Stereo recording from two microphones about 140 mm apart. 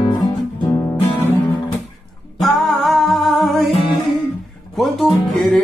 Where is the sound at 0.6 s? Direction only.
25° left (ahead or behind).